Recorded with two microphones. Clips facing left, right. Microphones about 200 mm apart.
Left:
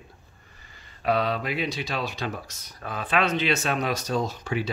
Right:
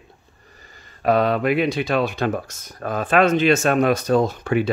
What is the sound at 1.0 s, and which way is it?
Speech, 50° right (ahead or behind).